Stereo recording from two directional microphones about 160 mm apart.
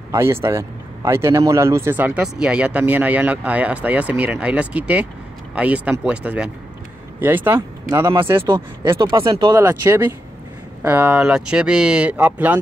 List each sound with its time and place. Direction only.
0.1 s a man's voice: 15° right (ahead or behind)